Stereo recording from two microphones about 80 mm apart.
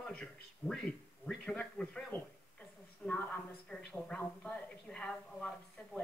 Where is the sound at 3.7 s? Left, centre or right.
Centre.